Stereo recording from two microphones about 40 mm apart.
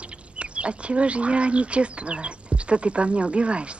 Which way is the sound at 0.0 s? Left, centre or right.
Right.